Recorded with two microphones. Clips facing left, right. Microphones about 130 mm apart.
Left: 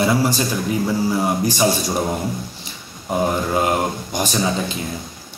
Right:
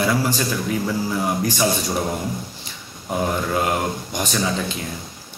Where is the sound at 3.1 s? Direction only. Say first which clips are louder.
Left 3 dB; 20° left (ahead or behind).